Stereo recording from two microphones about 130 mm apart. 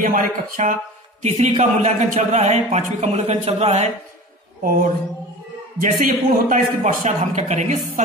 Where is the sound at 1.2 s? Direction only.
65° right (ahead or behind).